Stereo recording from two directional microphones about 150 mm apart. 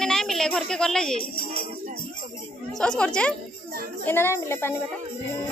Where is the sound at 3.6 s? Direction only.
75° right (ahead or behind).